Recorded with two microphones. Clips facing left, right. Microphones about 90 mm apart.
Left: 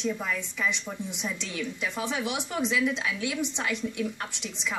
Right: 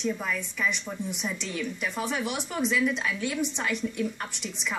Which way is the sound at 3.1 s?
50° right (ahead or behind).